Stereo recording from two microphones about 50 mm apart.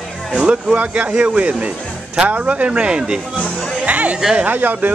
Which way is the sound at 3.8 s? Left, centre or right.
Right.